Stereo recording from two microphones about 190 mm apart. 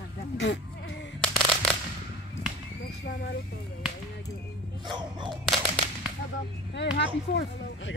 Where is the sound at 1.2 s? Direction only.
5° left (ahead or behind).